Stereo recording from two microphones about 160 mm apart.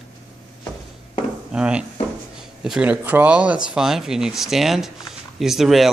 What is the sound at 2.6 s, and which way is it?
Speech, 5° right (ahead or behind).